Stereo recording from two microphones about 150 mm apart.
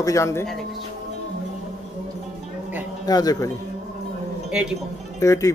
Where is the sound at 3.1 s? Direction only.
25° left (ahead or behind).